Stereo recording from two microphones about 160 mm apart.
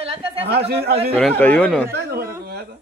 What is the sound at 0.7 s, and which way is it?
Speech, 80° right.